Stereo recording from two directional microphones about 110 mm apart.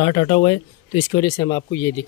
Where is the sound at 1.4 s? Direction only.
25° left (ahead or behind).